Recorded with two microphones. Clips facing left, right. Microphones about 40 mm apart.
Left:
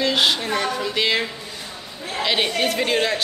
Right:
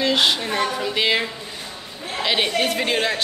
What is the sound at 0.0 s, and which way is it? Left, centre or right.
A woman's voice, centre.